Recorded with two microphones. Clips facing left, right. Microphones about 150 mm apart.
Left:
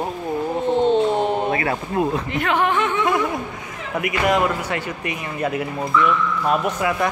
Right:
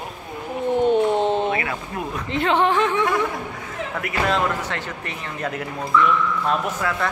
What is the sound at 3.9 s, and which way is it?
Speech, 10° left (ahead or behind).